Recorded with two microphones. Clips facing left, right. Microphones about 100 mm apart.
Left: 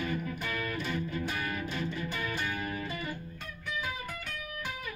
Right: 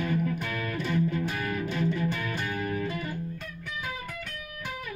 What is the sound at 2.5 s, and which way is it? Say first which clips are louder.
Music: right 5 dB; 40° right (ahead or behind).